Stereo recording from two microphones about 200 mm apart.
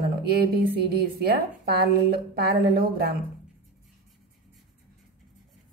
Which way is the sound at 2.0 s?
50° right (ahead or behind).